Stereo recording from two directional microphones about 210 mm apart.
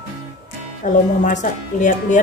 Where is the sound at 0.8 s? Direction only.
35° left (ahead or behind).